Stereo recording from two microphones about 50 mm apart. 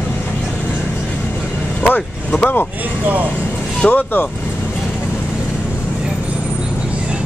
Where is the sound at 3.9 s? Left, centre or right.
Left.